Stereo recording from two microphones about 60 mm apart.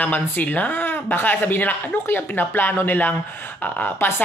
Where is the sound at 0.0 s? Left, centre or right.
Left.